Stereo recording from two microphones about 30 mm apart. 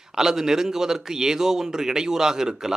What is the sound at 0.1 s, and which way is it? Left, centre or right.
A man's voice, centre.